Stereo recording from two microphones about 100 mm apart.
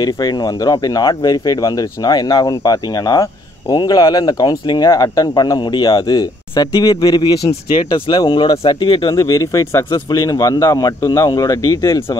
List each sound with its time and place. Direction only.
0.0 s speech: 45° left (ahead or behind)
3.7 s speech: 50° left (ahead or behind)
9.1 s speech: 35° left (ahead or behind)